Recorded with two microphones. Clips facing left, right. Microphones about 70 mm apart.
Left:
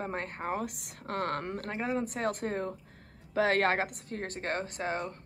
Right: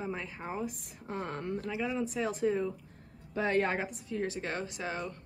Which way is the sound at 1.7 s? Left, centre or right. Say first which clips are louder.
Left 2 dB; left.